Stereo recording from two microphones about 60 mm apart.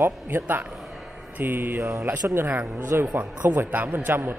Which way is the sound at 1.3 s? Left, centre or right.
Right.